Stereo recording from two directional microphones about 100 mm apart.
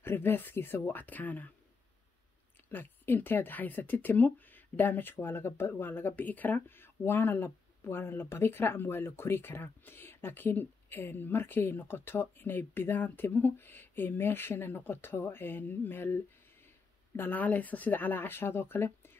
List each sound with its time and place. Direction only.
0.0 s speech: 20° left (ahead or behind)
2.7 s speech: 20° left (ahead or behind)
17.2 s speech: 15° left (ahead or behind)